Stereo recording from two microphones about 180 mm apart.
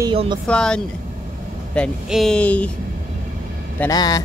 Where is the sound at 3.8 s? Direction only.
20° left (ahead or behind).